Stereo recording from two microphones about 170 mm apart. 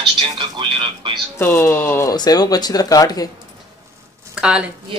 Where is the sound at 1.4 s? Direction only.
15° left (ahead or behind).